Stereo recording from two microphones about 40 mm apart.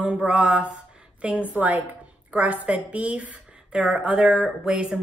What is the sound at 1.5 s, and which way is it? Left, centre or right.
A woman's voice, right.